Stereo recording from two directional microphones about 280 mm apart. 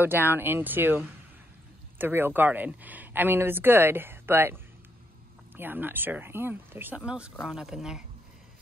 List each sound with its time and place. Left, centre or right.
0.0 s speech: centre
5.6 s speech: centre